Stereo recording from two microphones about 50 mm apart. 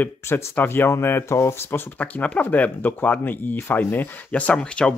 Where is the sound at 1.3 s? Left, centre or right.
Left.